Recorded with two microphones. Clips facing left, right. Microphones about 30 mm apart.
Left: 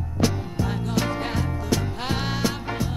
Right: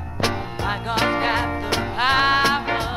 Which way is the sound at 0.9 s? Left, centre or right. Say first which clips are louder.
Right 9 dB; right.